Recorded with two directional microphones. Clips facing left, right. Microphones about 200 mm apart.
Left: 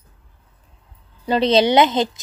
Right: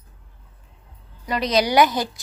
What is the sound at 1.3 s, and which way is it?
Speech, 30° left (ahead or behind).